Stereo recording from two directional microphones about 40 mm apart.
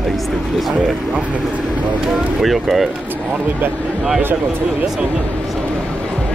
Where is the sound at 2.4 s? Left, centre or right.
Centre.